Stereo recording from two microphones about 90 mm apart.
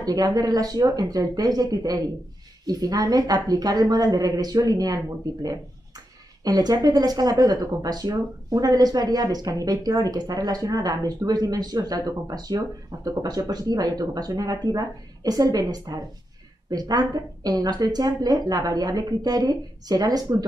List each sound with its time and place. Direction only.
0.0 s speech: 45° right (ahead or behind)